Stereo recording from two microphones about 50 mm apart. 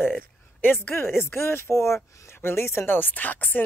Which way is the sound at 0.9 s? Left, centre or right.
Left.